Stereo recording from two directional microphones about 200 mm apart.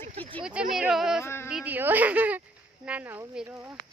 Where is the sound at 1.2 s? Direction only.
10° left (ahead or behind).